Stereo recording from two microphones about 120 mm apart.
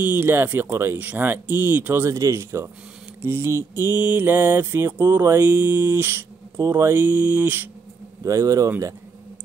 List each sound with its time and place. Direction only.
0.0 s speech: 15° right (ahead or behind)
3.2 s mantra: 20° right (ahead or behind)
8.2 s mantra: 25° right (ahead or behind)